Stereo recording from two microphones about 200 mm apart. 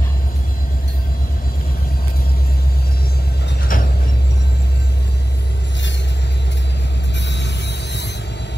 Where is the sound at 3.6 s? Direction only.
50° left (ahead or behind).